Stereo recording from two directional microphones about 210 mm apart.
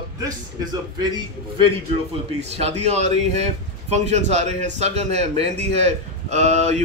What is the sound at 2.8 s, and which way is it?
A man's voice, 30° right (ahead or behind).